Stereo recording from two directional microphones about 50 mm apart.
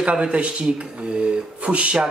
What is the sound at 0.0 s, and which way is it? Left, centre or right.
Speech, right.